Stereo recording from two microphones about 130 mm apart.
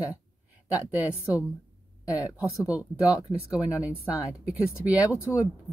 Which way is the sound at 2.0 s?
10° right (ahead or behind).